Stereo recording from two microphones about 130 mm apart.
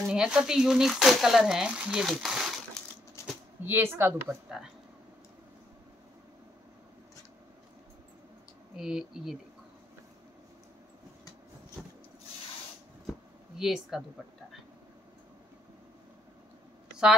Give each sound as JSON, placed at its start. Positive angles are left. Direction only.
{"t": 0.1, "sound": "speech", "side_deg": -5}
{"t": 3.2, "sound": "a sound", "side_deg": 20}
{"t": 3.6, "sound": "speech", "side_deg": -15}
{"t": 8.7, "sound": "speech", "side_deg": -5}
{"t": 11.8, "sound": "rub", "side_deg": 0}
{"t": 13.6, "sound": "speech", "side_deg": 0}